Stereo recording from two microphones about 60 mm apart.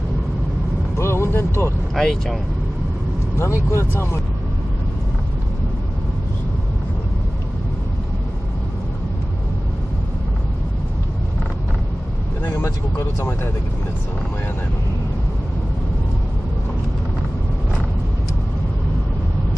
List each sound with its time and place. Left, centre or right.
0.9 s vehicle: left
2.0 s speech: centre
3.7 s speech: left
12.6 s speech: left